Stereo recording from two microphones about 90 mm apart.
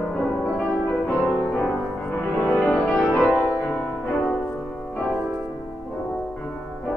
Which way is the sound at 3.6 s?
15° left (ahead or behind).